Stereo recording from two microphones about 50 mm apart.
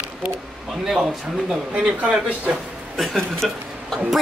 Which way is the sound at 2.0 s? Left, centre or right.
Right.